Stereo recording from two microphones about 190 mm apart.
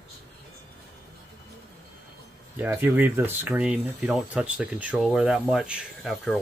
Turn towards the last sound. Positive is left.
turn(degrees=0)  # may be behind; listen again after turning